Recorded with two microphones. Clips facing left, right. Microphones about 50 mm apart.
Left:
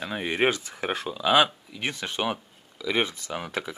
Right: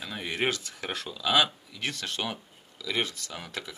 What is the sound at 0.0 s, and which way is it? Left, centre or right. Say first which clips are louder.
Speech: left 5 dB; left.